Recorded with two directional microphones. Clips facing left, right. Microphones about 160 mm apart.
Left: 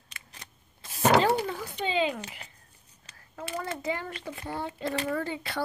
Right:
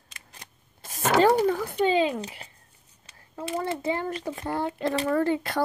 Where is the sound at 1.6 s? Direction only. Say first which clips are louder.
Right 6 dB; 55° right (ahead or behind).